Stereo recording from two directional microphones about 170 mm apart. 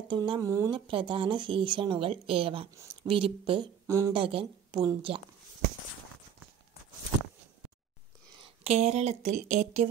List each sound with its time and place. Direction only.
0.1 s speech: 25° right (ahead or behind)
2.7 s speech: 15° right (ahead or behind)
3.1 s a woman's voice: 30° right (ahead or behind)
3.8 s speech: 20° right (ahead or behind)
4.1 s a woman's voice: 30° right (ahead or behind)
8.4 s speech: 40° right (ahead or behind)